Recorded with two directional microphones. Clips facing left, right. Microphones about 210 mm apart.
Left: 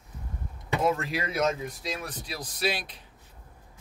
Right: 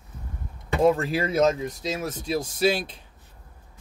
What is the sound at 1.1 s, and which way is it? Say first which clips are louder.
Speech: right 6 dB; 25° right (ahead or behind).